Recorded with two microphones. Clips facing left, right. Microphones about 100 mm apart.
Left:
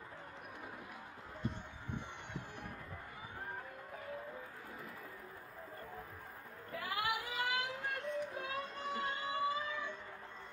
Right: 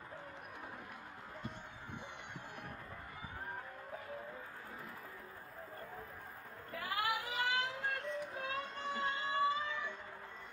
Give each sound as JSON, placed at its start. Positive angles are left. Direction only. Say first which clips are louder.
{"t": 6.8, "sound": "child singing", "louder": "right 1 dB", "side_deg": -30}